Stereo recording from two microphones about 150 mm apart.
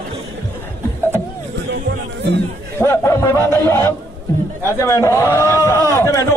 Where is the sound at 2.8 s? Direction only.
15° left (ahead or behind).